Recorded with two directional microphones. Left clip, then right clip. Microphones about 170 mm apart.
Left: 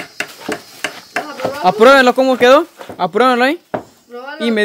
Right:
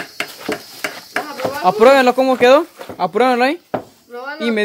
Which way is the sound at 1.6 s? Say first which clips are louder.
Left 2 dB; 25° left (ahead or behind).